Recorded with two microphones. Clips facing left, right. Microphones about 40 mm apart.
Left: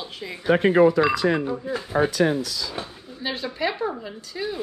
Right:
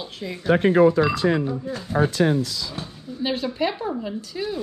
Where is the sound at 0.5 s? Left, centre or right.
Left.